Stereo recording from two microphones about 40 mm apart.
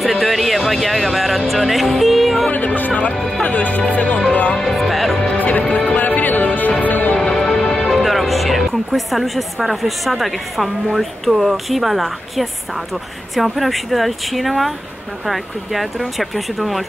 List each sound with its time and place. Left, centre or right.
0.0 s a sound: centre
0.7 s speech: centre
1.5 s music: centre
2.5 s music: left
2.9 s music: left
3.2 s music: centre
3.4 s speech: left
3.9 s music: left
4.6 s music: centre
5.1 s music: centre
5.4 s music: left
7.4 s music: centre
7.9 s a woman's voice: centre